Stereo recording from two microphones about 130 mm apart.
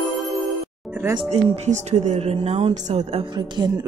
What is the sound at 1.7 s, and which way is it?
A woman's voice, 70° right (ahead or behind).